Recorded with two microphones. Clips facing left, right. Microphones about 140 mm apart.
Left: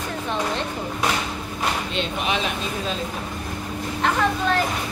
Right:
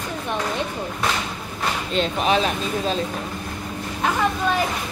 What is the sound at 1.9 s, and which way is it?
Speech, 40° right (ahead or behind).